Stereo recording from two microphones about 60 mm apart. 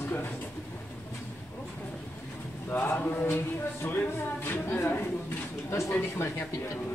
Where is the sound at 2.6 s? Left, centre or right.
Left.